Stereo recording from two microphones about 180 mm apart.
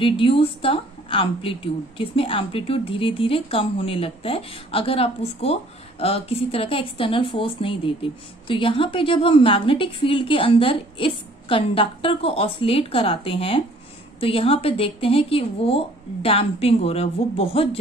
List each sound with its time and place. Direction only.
0.0 s a woman's voice: 30° left (ahead or behind)